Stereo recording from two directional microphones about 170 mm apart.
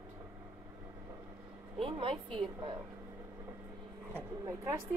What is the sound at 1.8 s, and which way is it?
A woman's voice, 30° right (ahead or behind).